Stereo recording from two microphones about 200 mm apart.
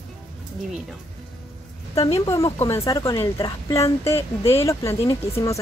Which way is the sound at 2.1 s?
15° left (ahead or behind).